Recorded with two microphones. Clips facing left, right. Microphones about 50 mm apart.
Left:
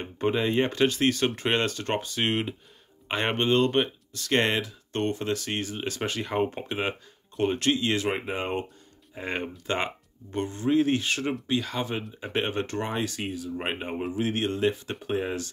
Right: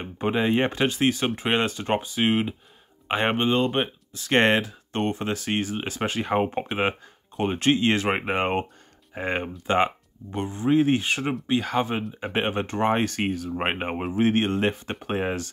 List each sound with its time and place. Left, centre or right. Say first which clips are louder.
0.0 s speech: right 2 dB; centre
4.3 s speech: right 5 dB; right
4.9 s speech: right 1 dB; right
9.7 s speech: right 8 dB; right
12.8 s speech: right 7 dB; right